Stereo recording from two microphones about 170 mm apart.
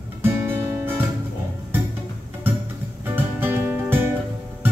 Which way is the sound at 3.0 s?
10° right (ahead or behind).